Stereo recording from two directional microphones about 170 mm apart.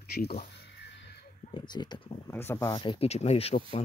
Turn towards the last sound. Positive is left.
turn(degrees=35)  # may be behind; listen again after turning